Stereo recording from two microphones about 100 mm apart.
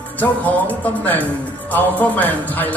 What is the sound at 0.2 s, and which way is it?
Speech, 15° left (ahead or behind).